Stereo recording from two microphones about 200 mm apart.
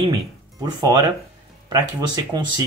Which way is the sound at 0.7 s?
20° right (ahead or behind).